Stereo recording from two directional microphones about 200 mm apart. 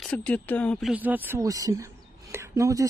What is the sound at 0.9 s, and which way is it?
Speech, 10° right (ahead or behind).